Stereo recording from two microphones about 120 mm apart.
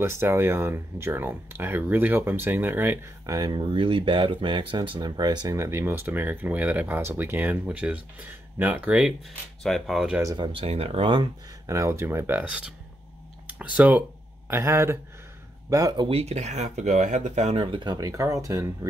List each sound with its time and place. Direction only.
0.0 s speech: 20° right (ahead or behind)
3.3 s speech: 35° right (ahead or behind)
3.7 s speech: 45° right (ahead or behind)
5.6 s speech: 20° right (ahead or behind)
9.6 s speech: 5° left (ahead or behind)
10.2 s speech: 40° right (ahead or behind)
11.6 s speech: 25° right (ahead or behind)
15.7 s speech: 30° right (ahead or behind)
16.1 s speech: 60° right (ahead or behind); by 17.6 s 75° right (ahead or behind)
17.6 s speech: 45° right (ahead or behind); by 18.7 s 25° right (ahead or behind)